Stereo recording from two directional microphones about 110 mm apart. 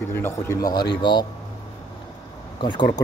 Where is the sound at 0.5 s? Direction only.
35° left (ahead or behind).